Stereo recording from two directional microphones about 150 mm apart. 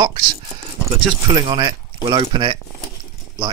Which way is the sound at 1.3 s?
30° right (ahead or behind).